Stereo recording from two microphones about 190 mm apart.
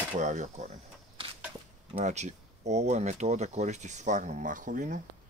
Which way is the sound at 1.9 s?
35° right (ahead or behind).